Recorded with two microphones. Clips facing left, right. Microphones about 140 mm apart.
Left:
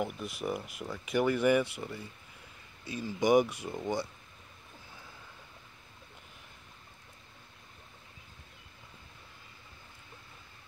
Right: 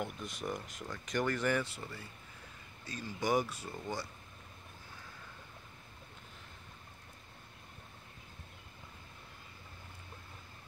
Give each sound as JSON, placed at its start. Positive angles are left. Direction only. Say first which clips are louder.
{"t": 0.0, "sound": "speech", "louder": "left 5 dB", "side_deg": 5}